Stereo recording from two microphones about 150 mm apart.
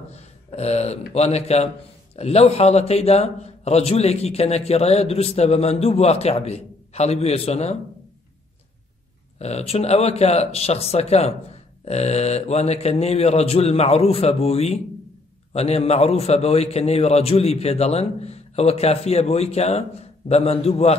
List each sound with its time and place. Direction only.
0.1 s a man's voice: 45° left (ahead or behind)
9.4 s a man's voice: 45° left (ahead or behind)